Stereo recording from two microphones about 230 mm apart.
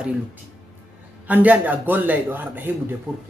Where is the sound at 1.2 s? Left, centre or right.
Centre.